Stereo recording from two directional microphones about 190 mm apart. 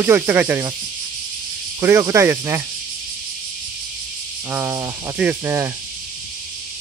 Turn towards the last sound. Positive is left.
turn(degrees=-10)  # may be behind; listen again after turning